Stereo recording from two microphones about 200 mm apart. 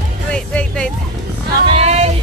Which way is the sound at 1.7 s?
35° right (ahead or behind).